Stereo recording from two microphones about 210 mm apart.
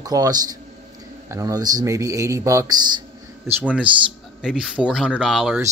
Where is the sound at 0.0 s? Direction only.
15° right (ahead or behind).